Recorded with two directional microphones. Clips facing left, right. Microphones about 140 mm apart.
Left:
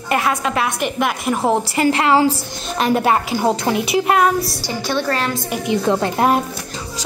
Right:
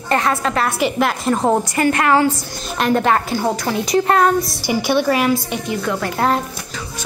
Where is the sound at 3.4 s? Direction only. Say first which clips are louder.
Left 2 dB; 20° left (ahead or behind).